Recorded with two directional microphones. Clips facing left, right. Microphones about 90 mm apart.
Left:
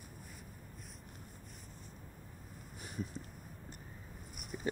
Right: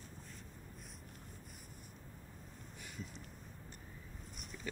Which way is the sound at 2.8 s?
20° left (ahead or behind).